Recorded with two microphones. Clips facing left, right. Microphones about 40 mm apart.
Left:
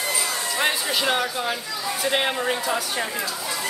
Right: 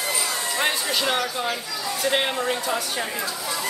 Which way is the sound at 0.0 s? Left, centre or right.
Centre.